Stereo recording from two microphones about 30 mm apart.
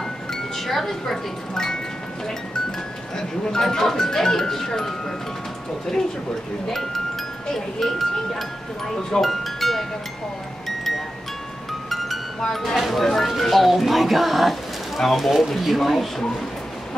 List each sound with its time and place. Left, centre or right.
0.7 s speech: centre
1.5 s speech: left
3.7 s speech: centre
7.8 s speech: centre
9.2 s speech: centre
11.9 s music: centre
12.7 s speech: centre
13.0 s speech: centre